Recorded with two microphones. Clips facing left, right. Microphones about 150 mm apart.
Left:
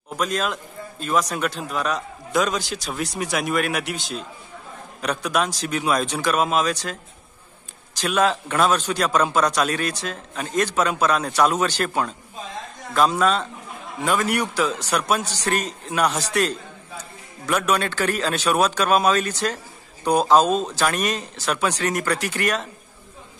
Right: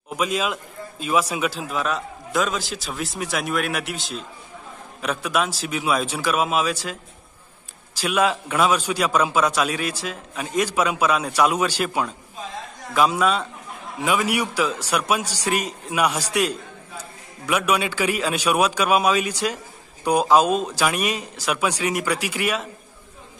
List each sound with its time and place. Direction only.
0.1 s a man's voice: 5° right (ahead or behind)
8.0 s a man's voice: 10° right (ahead or behind)